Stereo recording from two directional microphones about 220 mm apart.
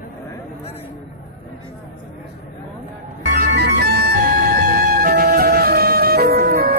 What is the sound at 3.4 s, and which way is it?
Music, 45° right (ahead or behind).